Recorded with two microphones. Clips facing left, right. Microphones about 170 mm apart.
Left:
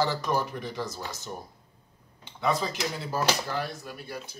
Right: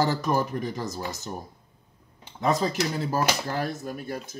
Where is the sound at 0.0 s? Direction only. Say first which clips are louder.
Right 3 dB; 45° right (ahead or behind).